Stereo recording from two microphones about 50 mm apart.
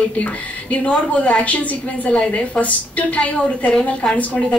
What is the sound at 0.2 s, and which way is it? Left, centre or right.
A woman's voice, left.